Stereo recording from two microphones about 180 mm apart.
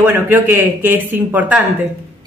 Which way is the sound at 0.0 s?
10° right (ahead or behind).